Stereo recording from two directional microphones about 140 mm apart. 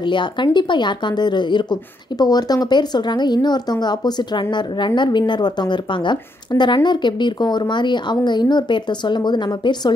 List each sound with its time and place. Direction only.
0.0 s speech: 35° left (ahead or behind)